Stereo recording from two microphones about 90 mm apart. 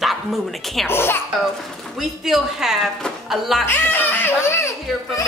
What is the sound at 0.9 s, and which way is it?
Speech, 25° left (ahead or behind).